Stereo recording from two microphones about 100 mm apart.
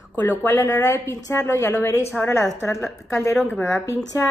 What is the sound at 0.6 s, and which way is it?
A woman's voice, 35° left (ahead or behind).